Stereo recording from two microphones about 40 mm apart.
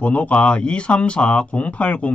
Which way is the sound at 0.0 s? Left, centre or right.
Left.